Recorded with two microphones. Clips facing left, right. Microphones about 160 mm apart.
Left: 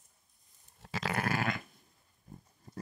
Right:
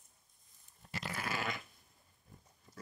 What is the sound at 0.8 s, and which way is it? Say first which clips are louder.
Sheep: left 8 dB; 90° left.